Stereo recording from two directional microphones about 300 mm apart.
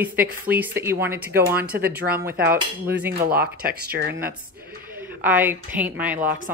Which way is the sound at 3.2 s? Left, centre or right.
Right.